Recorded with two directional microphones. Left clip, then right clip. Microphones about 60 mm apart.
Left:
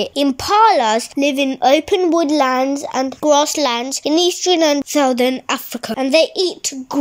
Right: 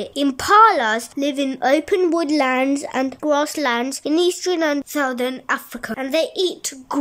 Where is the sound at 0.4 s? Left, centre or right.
Centre.